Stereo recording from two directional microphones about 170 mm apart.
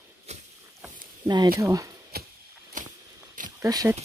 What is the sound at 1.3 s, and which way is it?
Speech, 25° right (ahead or behind).